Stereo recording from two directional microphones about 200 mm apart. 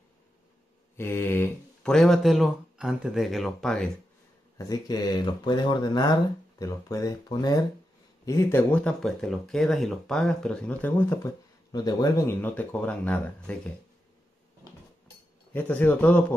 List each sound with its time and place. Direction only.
0.9 s speech: 10° left (ahead or behind)
4.6 s speech: 20° left (ahead or behind)
15.5 s speech: 10° left (ahead or behind)